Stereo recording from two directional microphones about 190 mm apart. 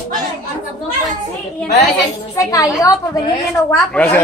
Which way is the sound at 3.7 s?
10° left (ahead or behind).